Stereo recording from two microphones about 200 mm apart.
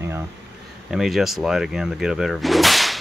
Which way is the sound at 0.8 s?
Centre (ahead or behind).